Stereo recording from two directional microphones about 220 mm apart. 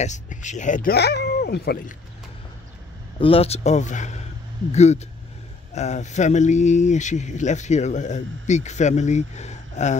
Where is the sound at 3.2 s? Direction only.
25° left (ahead or behind).